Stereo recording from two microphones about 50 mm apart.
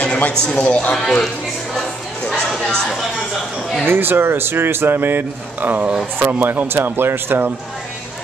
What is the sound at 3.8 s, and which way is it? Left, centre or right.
Speech, right.